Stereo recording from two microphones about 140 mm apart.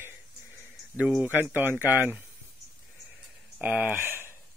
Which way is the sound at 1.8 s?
20° left (ahead or behind).